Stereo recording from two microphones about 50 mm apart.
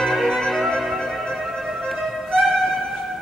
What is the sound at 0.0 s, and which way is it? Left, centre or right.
Music, centre.